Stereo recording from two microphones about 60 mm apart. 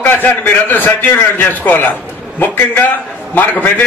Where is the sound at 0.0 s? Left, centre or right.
Left.